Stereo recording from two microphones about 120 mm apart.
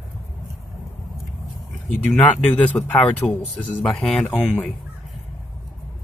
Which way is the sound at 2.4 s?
15° left (ahead or behind).